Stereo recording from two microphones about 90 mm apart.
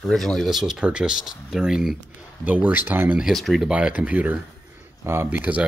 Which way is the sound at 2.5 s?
20° right (ahead or behind).